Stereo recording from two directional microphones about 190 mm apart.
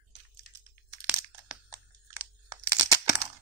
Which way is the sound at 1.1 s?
15° right (ahead or behind).